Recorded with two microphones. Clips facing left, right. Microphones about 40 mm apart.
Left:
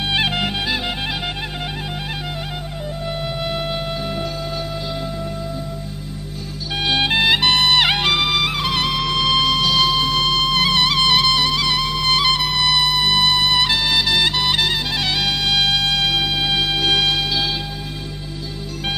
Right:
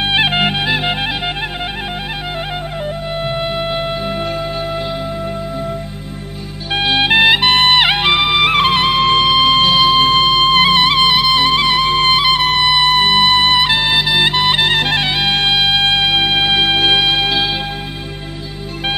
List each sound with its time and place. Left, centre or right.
0.1 s music: right
3.1 s music: right
6.9 s music: right
8.5 s music: right
14.8 s music: right
15.0 s music: right